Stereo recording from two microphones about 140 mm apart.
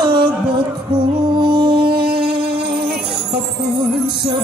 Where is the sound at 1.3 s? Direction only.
35° right (ahead or behind).